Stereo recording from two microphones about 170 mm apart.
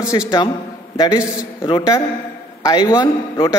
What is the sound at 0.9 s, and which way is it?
A man's voice, 20° left (ahead or behind).